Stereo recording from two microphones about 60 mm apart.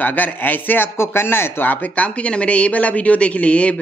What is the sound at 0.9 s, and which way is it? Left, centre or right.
Speech, left.